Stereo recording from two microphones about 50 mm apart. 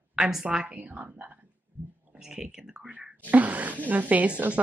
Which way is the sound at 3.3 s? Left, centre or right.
Right.